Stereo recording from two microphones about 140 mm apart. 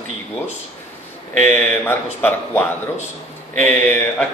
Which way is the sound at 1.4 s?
15° left (ahead or behind).